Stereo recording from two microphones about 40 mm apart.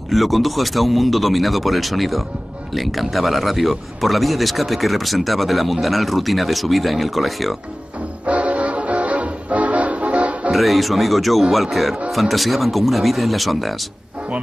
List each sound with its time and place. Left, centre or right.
0.1 s speech: centre
8.3 s music: right
10.5 s speech: centre